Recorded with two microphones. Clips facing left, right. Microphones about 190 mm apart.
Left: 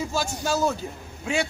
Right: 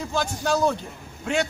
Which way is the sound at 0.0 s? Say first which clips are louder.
Right 1 dB; 5° left (ahead or behind).